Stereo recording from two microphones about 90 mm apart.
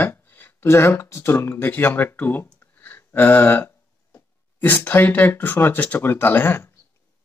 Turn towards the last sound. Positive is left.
turn(degrees=25)  # may be behind; listen again after turning